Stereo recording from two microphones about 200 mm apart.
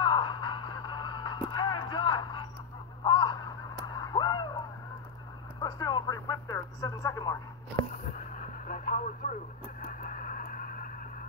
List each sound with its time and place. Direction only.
0.0 s a sound: 25° left (ahead or behind)
3.0 s caw: 25° left (ahead or behind)
5.6 s radio: 20° left (ahead or behind)
8.6 s radio: 40° left (ahead or behind)